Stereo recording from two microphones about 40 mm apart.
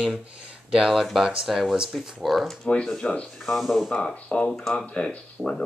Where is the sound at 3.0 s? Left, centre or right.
Left.